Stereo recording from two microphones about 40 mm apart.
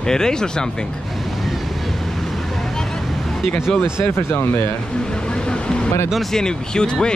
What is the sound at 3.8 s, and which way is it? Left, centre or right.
Speech, left.